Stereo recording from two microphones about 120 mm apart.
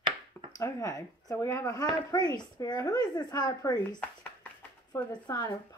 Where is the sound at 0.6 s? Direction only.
30° left (ahead or behind).